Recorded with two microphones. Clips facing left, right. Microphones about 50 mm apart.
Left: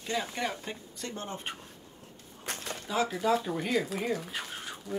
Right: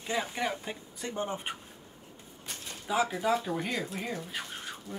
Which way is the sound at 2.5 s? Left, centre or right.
Left.